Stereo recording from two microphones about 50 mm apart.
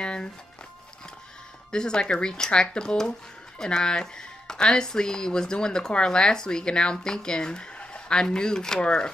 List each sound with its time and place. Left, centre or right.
0.0 s music: centre
1.7 s speech: centre